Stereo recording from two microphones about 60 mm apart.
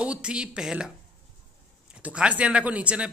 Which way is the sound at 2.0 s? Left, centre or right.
Right.